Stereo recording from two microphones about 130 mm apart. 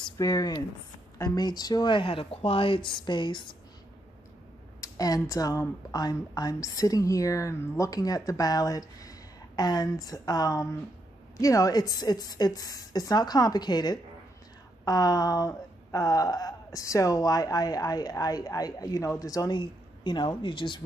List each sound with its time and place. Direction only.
0.2 s a woman's voice: 25° left (ahead or behind)
4.7 s a woman's voice: 25° left (ahead or behind)